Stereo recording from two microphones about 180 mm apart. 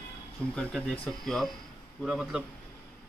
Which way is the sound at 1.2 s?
Centre (ahead or behind).